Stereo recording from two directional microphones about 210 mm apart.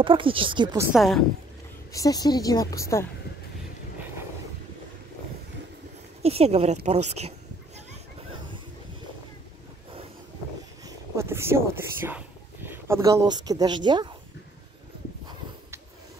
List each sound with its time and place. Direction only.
0.0 s a woman's voice: 25° right (ahead or behind)
0.9 s a woman's voice: centre (ahead or behind)
1.9 s a woman's voice: 15° left (ahead or behind)
6.2 s a woman's voice: 30° right (ahead or behind)
10.9 s speech: 15° right (ahead or behind)